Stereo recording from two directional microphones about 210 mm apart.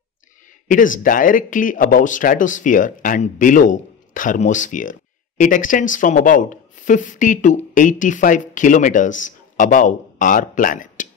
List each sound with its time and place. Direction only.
0.7 s speech: 40° left (ahead or behind)